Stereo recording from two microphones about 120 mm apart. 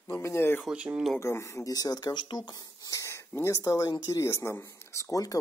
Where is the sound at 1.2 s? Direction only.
25° left (ahead or behind).